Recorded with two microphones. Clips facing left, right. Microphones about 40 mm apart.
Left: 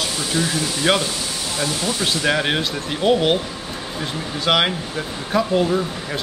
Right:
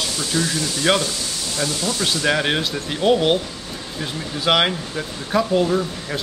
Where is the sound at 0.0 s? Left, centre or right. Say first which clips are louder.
Left 1 dB; centre.